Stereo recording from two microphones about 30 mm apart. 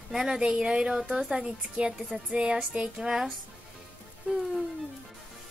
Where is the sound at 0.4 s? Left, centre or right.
Right.